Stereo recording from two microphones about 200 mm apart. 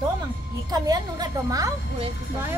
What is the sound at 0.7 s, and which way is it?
A woman's voice, 20° right (ahead or behind).